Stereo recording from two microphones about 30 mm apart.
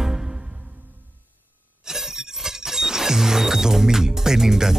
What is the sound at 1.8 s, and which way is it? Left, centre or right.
Music, centre.